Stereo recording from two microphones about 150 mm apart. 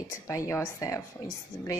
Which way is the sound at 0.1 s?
20° left (ahead or behind).